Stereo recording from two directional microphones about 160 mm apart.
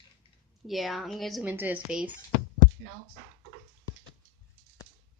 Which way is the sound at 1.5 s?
10° right (ahead or behind).